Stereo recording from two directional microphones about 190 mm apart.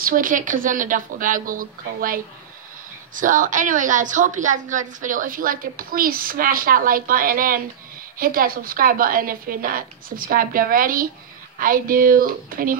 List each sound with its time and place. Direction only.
0.0 s a woman's voice: 45° right (ahead or behind)